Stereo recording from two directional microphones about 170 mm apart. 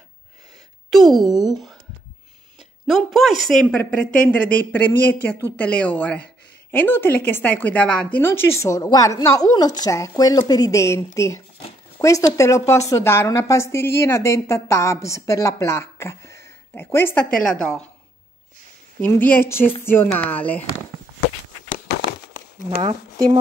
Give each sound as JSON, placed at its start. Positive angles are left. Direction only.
{"t": 0.9, "sound": "speech", "side_deg": 0}
{"t": 2.9, "sound": "speech", "side_deg": 0}
{"t": 18.9, "sound": "speech", "side_deg": 10}